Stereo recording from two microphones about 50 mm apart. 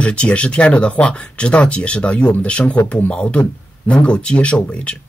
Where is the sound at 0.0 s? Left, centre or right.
Left.